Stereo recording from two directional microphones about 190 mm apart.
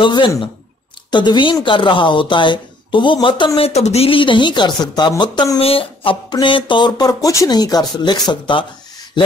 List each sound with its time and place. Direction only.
0.0 s speech: 25° left (ahead or behind)